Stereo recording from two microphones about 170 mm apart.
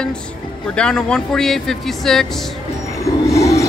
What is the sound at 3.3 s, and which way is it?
Train, 20° left (ahead or behind).